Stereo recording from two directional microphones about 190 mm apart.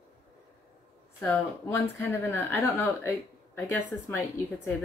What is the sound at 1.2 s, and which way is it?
Speech, 10° left (ahead or behind).